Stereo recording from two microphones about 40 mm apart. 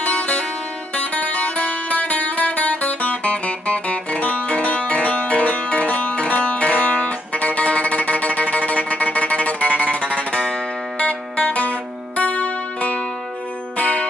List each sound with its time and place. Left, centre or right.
0.0 s music: left